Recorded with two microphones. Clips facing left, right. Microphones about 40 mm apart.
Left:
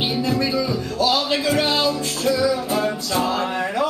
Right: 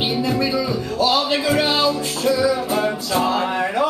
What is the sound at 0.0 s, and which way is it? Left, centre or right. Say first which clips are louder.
Music: right 1 dB; centre.